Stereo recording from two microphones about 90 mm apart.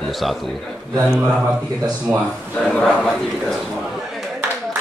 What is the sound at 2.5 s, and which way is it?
Speech, 15° left (ahead or behind).